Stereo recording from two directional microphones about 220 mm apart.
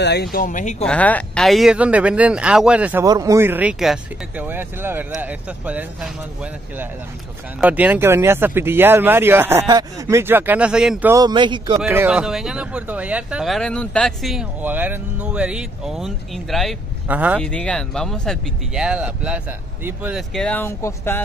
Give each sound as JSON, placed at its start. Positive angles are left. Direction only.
{"t": 0.0, "sound": "speech", "side_deg": 50}
{"t": 0.8, "sound": "speech", "side_deg": 5}
{"t": 7.6, "sound": "speech", "side_deg": -5}
{"t": 11.8, "sound": "speech", "side_deg": -10}
{"t": 17.4, "sound": "speech", "side_deg": 5}